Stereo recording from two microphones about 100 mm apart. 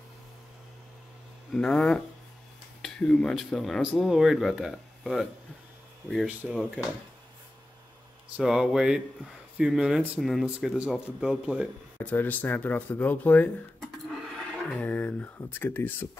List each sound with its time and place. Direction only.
1.5 s speech: 5° left (ahead or behind)
6.2 s speech: 15° right (ahead or behind)
8.4 s speech: 5° right (ahead or behind)
12.0 s speech: 15° left (ahead or behind)